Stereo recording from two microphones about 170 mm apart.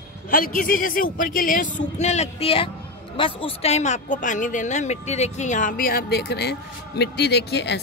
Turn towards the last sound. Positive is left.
turn(degrees=85)